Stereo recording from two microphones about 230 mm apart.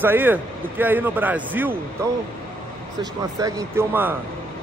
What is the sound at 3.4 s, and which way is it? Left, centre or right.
Speech, centre.